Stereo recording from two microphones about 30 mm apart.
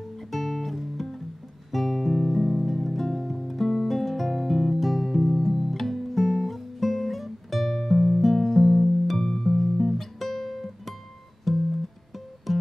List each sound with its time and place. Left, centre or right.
0.3 s guitar: centre
1.7 s music: centre
9.2 s music: centre
9.8 s guitar: centre
12.5 s music: centre